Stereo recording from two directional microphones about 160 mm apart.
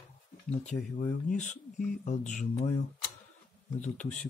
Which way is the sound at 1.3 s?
50° left (ahead or behind).